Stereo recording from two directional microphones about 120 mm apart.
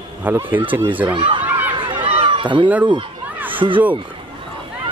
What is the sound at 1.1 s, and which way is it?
Speech, 45° right (ahead or behind).